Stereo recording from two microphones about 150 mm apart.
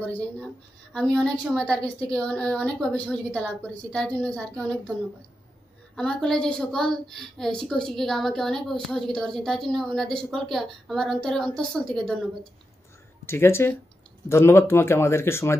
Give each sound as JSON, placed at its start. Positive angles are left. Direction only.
{"t": 0.9, "sound": "a woman's voice", "side_deg": 5}
{"t": 5.9, "sound": "a woman's voice", "side_deg": 5}
{"t": 13.2, "sound": "a woman's voice", "side_deg": 15}